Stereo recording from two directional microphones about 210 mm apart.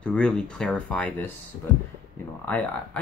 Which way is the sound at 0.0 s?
5° left (ahead or behind).